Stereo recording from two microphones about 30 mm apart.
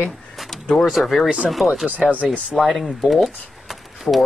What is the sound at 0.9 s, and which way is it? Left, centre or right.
Speech, centre.